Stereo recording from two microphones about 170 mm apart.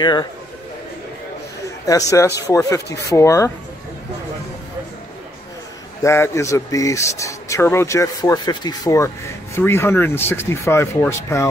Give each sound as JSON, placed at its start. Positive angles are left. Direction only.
{"t": 0.0, "sound": "speech", "side_deg": 25}
{"t": 1.9, "sound": "speech", "side_deg": 20}
{"t": 6.0, "sound": "speech", "side_deg": 15}